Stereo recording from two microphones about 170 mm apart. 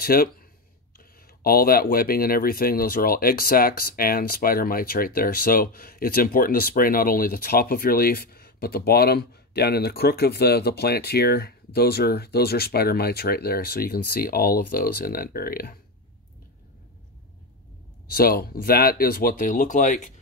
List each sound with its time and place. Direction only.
0.0 s speech: 60° left (ahead or behind)
18.0 s speech: 60° left (ahead or behind)